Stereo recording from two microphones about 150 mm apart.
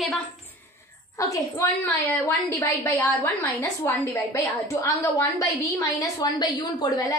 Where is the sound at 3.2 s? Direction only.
20° left (ahead or behind).